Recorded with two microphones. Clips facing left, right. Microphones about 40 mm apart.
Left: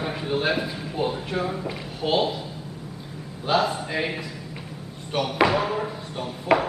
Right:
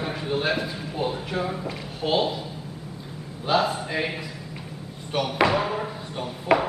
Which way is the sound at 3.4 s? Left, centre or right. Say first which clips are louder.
Even; centre.